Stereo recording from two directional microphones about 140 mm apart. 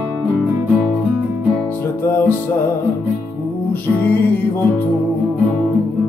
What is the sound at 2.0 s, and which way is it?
Music, 15° left (ahead or behind).